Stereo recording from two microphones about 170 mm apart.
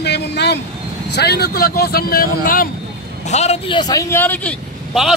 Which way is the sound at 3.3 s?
40° left (ahead or behind).